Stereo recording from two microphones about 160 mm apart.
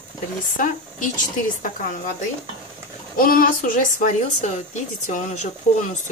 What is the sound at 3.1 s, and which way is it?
Speech, 65° left (ahead or behind).